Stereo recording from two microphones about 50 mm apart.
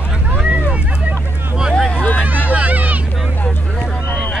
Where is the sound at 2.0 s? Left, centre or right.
Left.